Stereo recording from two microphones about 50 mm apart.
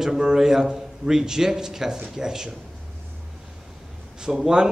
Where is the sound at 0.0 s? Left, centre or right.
Centre.